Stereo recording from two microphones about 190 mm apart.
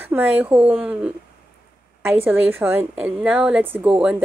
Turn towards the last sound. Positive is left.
turn(degrees=-5)  # may be behind; listen again after turning